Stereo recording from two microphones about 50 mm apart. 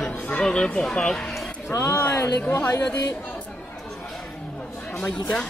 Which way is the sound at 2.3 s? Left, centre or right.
Left.